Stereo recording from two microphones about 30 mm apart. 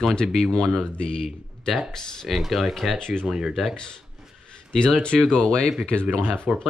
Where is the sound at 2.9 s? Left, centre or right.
Left.